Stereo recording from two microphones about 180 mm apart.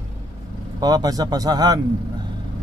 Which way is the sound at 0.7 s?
20° right (ahead or behind).